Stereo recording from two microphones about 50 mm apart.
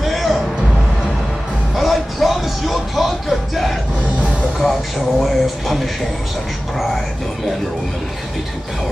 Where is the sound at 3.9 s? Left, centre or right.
Centre.